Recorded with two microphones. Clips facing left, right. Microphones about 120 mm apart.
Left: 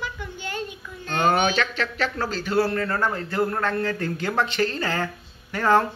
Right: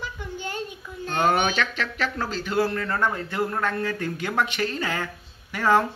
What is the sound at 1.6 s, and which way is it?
Speech, 35° left (ahead or behind).